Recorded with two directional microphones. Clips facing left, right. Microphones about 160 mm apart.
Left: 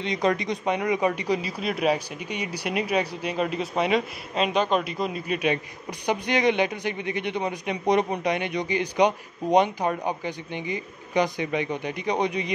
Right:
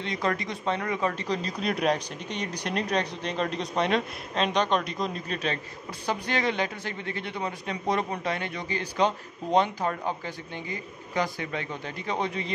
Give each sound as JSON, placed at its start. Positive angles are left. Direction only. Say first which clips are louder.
{"t": 0.0, "sound": "speech", "louder": "left 5 dB", "side_deg": 20}